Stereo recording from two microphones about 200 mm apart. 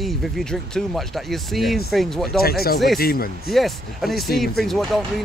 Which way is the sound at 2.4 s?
50° left (ahead or behind).